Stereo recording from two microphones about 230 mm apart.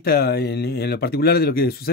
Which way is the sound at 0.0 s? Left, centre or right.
Left.